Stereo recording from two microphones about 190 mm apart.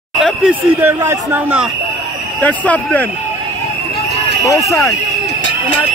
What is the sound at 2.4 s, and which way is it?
Speech, 10° left (ahead or behind).